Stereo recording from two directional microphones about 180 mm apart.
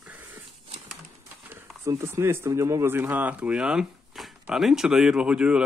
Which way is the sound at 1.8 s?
15° right (ahead or behind).